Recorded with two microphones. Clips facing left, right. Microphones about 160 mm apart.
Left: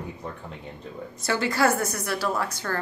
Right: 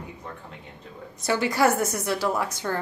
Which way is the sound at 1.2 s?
15° right (ahead or behind).